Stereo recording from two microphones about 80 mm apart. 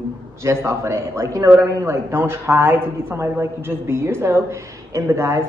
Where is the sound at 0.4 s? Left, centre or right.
Right.